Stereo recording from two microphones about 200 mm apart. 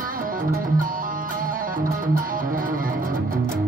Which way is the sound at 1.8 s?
45° right (ahead or behind).